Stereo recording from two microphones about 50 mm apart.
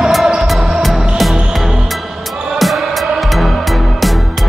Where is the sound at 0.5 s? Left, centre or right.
Centre.